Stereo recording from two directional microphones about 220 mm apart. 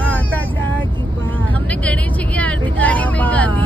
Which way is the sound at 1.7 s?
5° left (ahead or behind).